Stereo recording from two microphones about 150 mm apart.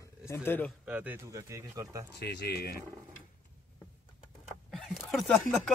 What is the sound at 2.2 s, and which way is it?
Speech, 90° left.